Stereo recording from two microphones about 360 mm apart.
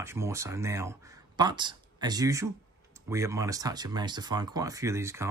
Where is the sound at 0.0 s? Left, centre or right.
Centre.